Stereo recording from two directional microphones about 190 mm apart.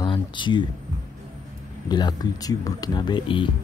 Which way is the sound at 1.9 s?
20° left (ahead or behind).